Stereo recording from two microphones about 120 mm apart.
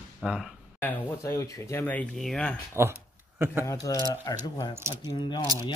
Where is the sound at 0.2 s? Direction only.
5° right (ahead or behind).